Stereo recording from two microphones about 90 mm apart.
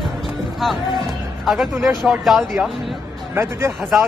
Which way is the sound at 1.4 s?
Centre (ahead or behind).